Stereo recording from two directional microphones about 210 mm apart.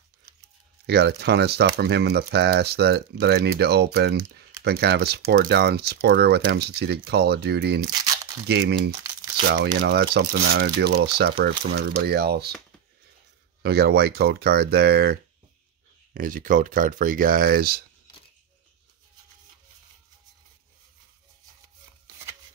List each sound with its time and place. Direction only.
0.8 s speech: 50° right (ahead or behind)
13.6 s speech: 50° right (ahead or behind)